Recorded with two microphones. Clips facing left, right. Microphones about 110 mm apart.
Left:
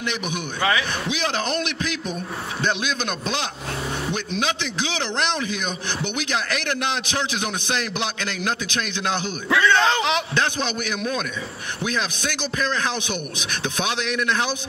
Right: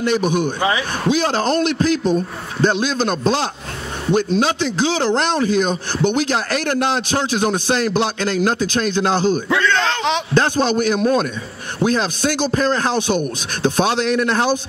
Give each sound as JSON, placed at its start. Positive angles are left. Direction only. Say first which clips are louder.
{"t": 0.0, "sound": "a man's voice", "louder": "right 10 dB", "side_deg": -35}
{"t": 0.6, "sound": "a man's voice", "louder": "right 3 dB", "side_deg": -25}
{"t": 1.0, "sound": "a man's voice", "louder": "right 8 dB", "side_deg": -40}
{"t": 9.6, "sound": "speech", "louder": "even", "side_deg": 10}
{"t": 10.3, "sound": "a man's voice", "louder": "right 8 dB", "side_deg": -40}